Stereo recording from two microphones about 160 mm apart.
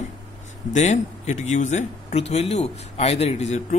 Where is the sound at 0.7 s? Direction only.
45° left (ahead or behind).